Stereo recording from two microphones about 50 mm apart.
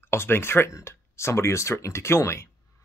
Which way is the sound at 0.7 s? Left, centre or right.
Left.